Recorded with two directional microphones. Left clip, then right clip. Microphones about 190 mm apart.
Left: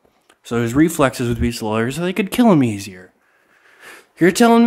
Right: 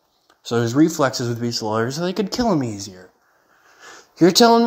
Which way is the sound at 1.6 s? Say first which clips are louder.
Left 1 dB; 20° left (ahead or behind).